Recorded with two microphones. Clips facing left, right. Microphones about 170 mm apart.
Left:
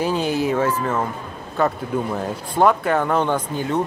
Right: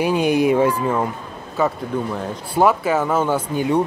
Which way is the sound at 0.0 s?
15° right (ahead or behind).